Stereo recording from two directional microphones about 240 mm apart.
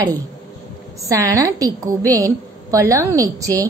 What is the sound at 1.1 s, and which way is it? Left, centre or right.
A woman's voice, centre.